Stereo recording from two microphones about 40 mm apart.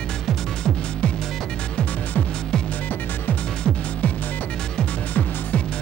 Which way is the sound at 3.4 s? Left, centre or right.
Left.